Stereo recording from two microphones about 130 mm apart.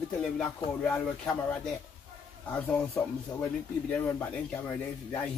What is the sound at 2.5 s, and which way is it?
Speech, 10° left (ahead or behind).